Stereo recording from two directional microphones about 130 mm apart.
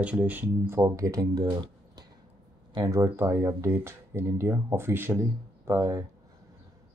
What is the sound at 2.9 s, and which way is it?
Speech, 20° right (ahead or behind).